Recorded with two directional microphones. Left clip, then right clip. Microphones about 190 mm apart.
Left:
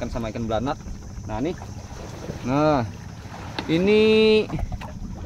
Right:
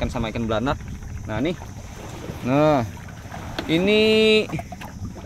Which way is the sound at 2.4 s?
15° right (ahead or behind).